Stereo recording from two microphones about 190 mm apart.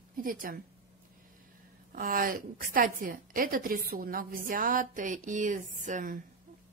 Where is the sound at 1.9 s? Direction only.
50° right (ahead or behind).